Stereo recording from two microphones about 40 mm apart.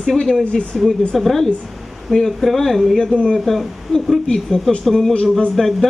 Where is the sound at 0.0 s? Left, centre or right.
Centre.